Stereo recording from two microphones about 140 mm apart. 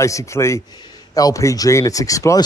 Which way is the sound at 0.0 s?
20° left (ahead or behind).